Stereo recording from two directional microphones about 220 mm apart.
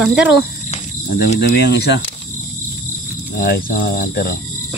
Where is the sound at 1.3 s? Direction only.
50° left (ahead or behind).